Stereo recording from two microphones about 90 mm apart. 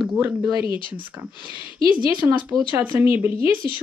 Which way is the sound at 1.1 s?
35° right (ahead or behind).